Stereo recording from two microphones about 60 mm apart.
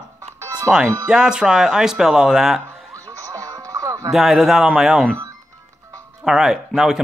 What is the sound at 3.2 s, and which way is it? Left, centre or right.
Music, right.